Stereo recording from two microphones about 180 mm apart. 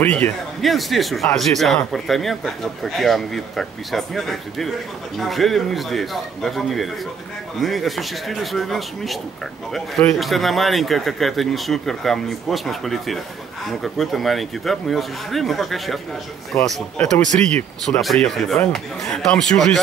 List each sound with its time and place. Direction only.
0.0 s a man's voice: 10° left (ahead or behind)
17.0 s speech: 40° right (ahead or behind)
17.6 s a man's voice: 5° left (ahead or behind)